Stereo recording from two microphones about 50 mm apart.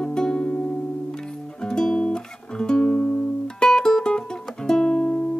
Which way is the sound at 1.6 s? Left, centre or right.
Centre.